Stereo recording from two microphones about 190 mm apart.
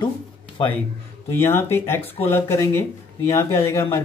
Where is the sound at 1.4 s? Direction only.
10° left (ahead or behind).